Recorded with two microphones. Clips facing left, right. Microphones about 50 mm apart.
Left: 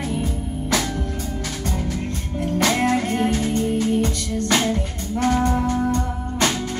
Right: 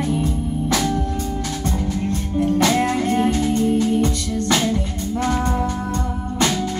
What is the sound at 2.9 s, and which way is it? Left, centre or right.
Music, left.